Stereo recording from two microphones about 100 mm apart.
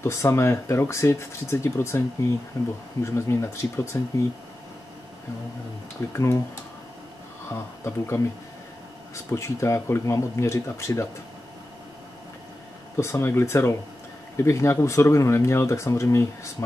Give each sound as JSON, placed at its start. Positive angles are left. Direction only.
{"t": 0.0, "sound": "speech", "side_deg": 30}
{"t": 2.6, "sound": "speech", "side_deg": 40}
{"t": 3.0, "sound": "speech", "side_deg": 30}
{"t": 7.5, "sound": "speech", "side_deg": 25}
{"t": 12.9, "sound": "speech", "side_deg": 25}